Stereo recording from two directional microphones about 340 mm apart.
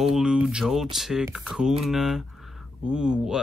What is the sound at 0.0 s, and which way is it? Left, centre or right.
Speech, centre.